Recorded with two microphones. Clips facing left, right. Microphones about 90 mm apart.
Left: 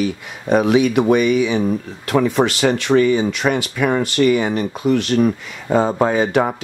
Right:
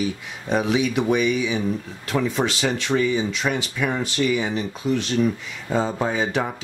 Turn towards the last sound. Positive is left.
turn(degrees=65)  # may be behind; listen again after turning